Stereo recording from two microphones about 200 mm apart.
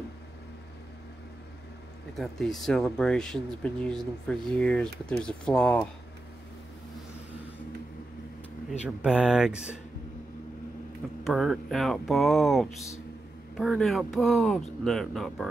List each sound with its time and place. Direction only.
2.1 s speech: centre (ahead or behind)
8.8 s speech: 5° right (ahead or behind)
11.2 s speech: centre (ahead or behind)